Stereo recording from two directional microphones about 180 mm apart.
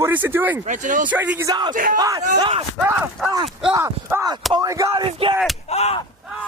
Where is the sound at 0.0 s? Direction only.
10° right (ahead or behind).